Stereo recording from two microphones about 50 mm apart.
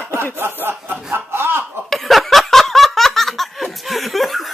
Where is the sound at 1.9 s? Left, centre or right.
Centre.